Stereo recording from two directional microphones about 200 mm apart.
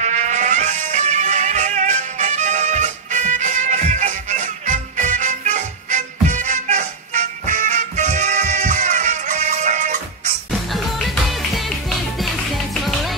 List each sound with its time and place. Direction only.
0.0 s music: 35° right (ahead or behind)